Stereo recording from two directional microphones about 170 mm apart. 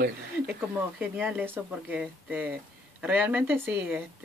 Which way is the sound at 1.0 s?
10° right (ahead or behind).